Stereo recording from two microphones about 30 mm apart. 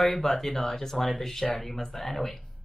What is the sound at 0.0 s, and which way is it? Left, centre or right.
Speech, centre.